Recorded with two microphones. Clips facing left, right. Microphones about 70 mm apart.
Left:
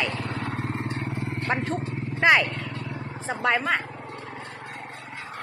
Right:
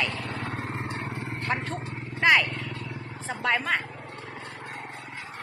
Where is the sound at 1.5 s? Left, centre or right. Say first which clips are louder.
Left 4 dB; left.